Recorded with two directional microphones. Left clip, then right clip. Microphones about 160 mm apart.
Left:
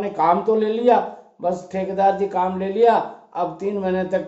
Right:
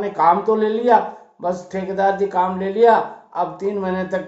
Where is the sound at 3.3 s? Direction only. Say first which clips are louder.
Right 2 dB; 30° left (ahead or behind).